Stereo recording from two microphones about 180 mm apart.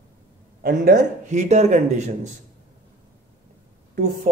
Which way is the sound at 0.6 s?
55° right (ahead or behind).